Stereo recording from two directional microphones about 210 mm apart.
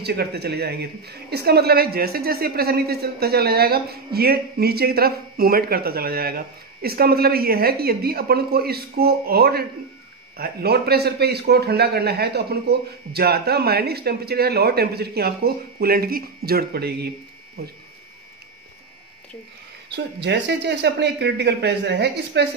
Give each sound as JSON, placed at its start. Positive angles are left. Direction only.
{"t": 0.0, "sound": "speech", "side_deg": -50}
{"t": 19.9, "sound": "speech", "side_deg": -55}